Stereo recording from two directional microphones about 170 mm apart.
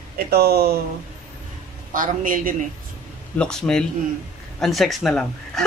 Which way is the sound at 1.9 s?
50° right (ahead or behind).